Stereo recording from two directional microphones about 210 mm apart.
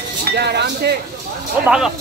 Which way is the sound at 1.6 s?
5° right (ahead or behind).